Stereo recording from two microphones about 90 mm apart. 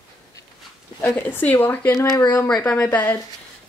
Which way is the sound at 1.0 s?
20° left (ahead or behind).